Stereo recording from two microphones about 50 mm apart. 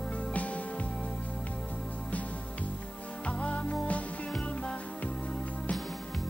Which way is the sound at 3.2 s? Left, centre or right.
Left.